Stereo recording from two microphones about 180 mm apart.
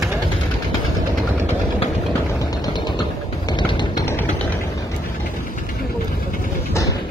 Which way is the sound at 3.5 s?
25° left (ahead or behind).